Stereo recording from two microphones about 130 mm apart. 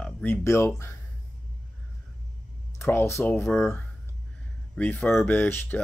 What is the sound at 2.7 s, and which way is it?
Speech, 20° left (ahead or behind).